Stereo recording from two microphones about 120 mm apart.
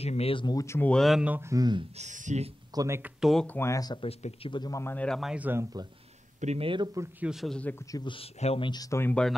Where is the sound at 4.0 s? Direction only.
60° left (ahead or behind).